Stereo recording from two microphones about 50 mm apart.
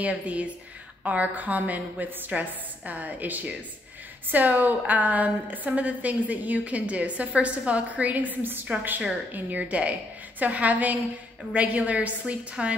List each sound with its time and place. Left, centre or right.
0.0 s a woman's voice: right